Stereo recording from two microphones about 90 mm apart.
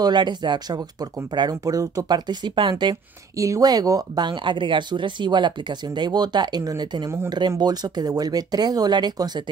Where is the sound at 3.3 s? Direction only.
40° right (ahead or behind).